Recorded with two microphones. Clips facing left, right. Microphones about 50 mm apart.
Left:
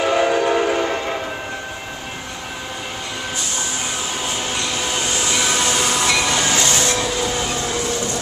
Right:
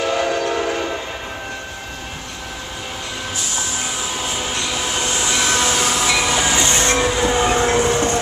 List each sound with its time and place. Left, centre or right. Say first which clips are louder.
0.0 s train: left 3 dB; centre
4.2 s train: even; centre
6.7 s train: right 2 dB; right
7.1 s siren: right 5 dB; right